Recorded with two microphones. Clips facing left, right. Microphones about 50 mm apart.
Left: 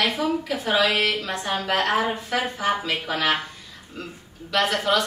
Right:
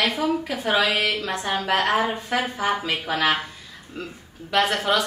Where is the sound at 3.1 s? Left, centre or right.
Centre.